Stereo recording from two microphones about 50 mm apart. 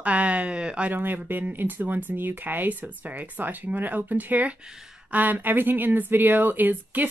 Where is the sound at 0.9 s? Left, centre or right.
Right.